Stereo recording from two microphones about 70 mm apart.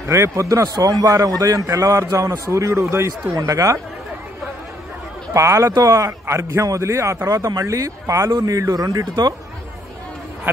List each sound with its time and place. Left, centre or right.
0.1 s a man's voice: right
0.7 s a man's voice: right
5.3 s a man's voice: right